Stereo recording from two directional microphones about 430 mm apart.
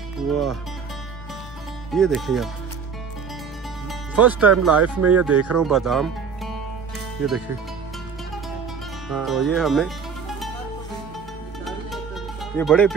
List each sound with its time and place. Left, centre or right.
0.3 s speech: centre
1.9 s speech: centre
4.1 s speech: centre
5.3 s speech: right
5.6 s speech: centre
9.1 s speech: centre
12.5 s speech: centre